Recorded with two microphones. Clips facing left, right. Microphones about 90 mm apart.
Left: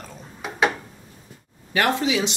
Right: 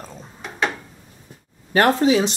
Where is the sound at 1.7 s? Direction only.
40° right (ahead or behind).